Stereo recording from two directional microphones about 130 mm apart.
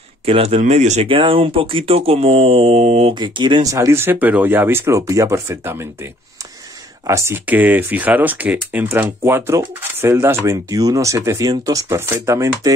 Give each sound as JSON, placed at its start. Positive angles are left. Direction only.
{"t": 0.2, "sound": "speech", "side_deg": -50}
{"t": 1.0, "sound": "speech", "side_deg": -40}
{"t": 3.2, "sound": "speech", "side_deg": -35}
{"t": 3.6, "sound": "speech", "side_deg": -20}
{"t": 7.1, "sound": "speech", "side_deg": -20}